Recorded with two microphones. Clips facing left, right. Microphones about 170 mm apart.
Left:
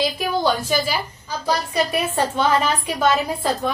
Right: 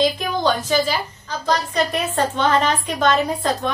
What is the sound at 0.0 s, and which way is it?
A woman's voice, 10° left (ahead or behind).